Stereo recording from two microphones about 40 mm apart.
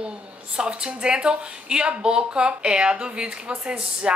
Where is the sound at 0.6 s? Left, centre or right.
Right.